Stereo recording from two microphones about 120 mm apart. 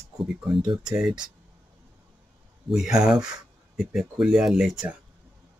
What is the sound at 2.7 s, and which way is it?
Speech, 5° right (ahead or behind).